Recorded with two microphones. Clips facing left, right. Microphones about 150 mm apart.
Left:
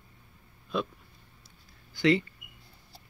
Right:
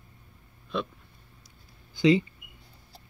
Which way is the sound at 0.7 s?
Centre (ahead or behind).